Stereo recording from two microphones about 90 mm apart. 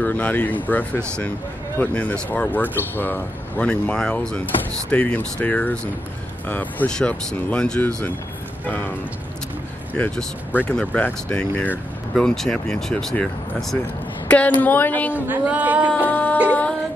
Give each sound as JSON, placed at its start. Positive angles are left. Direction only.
{"t": 0.0, "sound": "speech", "side_deg": 15}
{"t": 9.9, "sound": "a woman's voice", "side_deg": 15}
{"t": 15.1, "sound": "speech", "side_deg": -20}
{"t": 16.1, "sound": "speech", "side_deg": 15}
{"t": 16.4, "sound": "music", "side_deg": 15}